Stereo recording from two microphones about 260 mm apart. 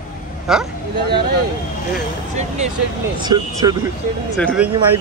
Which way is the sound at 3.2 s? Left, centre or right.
Centre.